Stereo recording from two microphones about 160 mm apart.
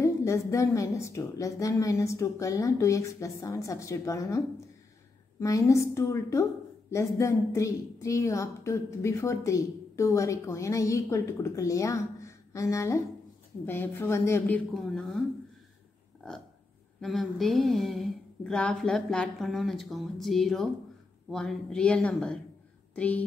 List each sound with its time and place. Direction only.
0.0 s a woman's voice: 20° left (ahead or behind)
5.4 s a woman's voice: 20° left (ahead or behind)
14.7 s speech: centre (ahead or behind)
17.0 s a woman's voice: centre (ahead or behind)